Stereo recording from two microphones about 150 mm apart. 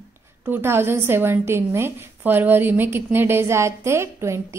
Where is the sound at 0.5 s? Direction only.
15° right (ahead or behind).